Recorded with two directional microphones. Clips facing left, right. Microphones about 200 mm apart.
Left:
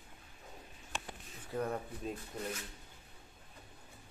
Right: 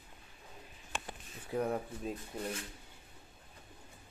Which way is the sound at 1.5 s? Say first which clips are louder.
Right 3 dB; 10° right (ahead or behind).